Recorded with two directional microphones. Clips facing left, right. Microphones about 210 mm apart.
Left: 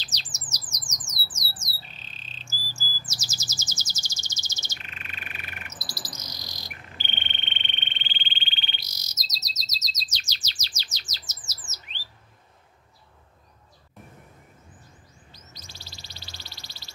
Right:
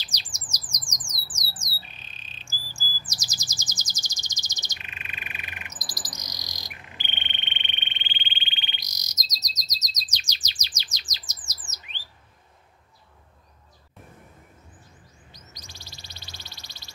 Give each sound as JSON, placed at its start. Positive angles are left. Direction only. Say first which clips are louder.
{"t": 0.0, "sound": "squawk", "louder": "left 1 dB", "side_deg": -15}
{"t": 15.3, "sound": "bird", "louder": "even", "side_deg": -15}